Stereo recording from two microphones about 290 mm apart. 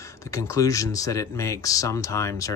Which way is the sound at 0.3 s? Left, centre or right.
Centre.